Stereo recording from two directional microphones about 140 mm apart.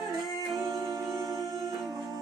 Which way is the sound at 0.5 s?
25° right (ahead or behind).